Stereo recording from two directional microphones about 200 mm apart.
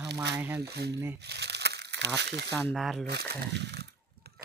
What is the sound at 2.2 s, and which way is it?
Speech, 55° right (ahead or behind).